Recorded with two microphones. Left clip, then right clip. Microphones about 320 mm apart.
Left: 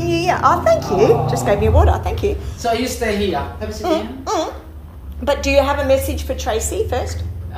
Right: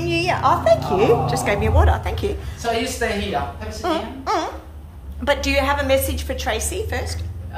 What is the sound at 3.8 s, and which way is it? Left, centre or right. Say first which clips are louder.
A woman's voice: left 3 dB; centre.